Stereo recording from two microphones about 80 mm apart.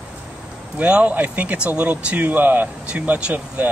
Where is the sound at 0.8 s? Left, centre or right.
Centre.